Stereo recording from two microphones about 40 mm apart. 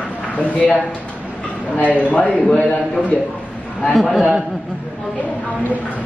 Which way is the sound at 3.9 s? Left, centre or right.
Centre.